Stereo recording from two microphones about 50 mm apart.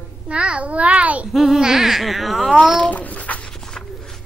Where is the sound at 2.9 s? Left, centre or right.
Left.